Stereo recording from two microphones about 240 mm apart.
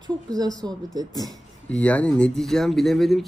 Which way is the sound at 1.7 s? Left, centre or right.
Centre.